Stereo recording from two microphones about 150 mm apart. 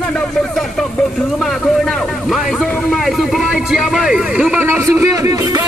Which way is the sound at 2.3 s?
5° left (ahead or behind).